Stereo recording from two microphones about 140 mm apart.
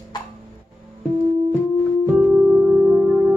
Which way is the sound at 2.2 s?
5° right (ahead or behind).